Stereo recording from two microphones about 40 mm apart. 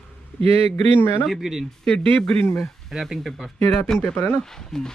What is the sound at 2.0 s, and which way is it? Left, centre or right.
Speech, left.